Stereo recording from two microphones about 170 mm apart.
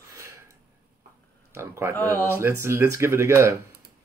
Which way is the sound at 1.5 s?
15° right (ahead or behind).